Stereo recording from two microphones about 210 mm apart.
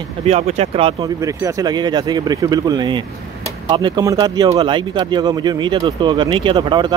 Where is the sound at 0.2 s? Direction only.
30° right (ahead or behind).